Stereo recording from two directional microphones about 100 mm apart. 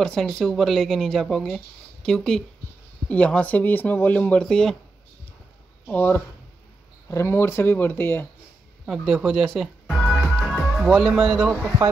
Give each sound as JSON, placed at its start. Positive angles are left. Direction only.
{"t": 0.0, "sound": "speech", "side_deg": 5}
{"t": 5.9, "sound": "speech", "side_deg": 20}
{"t": 8.8, "sound": "speech", "side_deg": 0}
{"t": 9.8, "sound": "music", "side_deg": 5}